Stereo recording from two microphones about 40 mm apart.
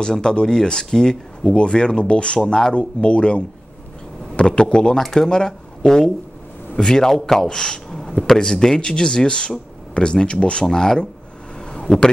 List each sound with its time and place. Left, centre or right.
0.0 s speech: centre
1.5 s speech: left
2.4 s speech: centre
2.7 s speech: left
5.0 s speech: centre
5.3 s speech: centre
10.6 s speech: centre